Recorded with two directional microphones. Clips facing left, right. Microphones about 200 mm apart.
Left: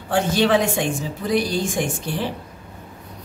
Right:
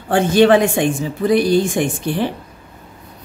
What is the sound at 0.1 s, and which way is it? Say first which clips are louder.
A woman's voice: right 6 dB; 55° right (ahead or behind).